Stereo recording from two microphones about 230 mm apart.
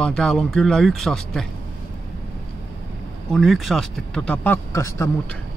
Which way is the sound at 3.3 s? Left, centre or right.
Centre.